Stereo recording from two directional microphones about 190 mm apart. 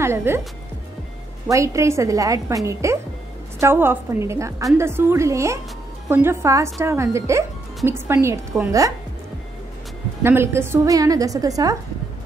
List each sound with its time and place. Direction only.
0.0 s speech: 10° right (ahead or behind)
1.5 s speech: 15° right (ahead or behind)
10.2 s speech: 15° right (ahead or behind)